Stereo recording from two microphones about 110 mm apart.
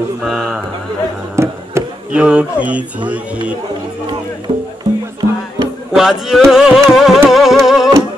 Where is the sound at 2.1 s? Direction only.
10° right (ahead or behind).